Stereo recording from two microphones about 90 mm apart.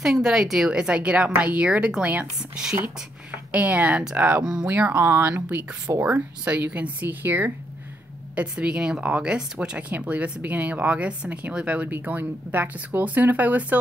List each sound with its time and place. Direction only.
0.0 s speech: 5° right (ahead or behind)